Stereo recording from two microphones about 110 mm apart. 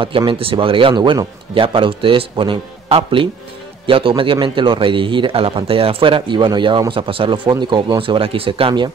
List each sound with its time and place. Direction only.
0.2 s a man's voice: 55° right (ahead or behind)